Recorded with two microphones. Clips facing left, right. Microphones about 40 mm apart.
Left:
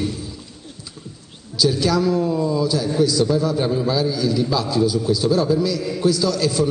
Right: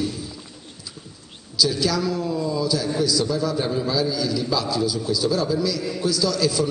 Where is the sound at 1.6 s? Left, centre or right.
Left.